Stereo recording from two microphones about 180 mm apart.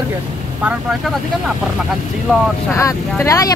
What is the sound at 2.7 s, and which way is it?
Speech, 15° left (ahead or behind).